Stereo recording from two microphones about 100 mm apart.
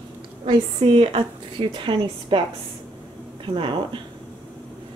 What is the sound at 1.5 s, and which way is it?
Speech, 55° right (ahead or behind).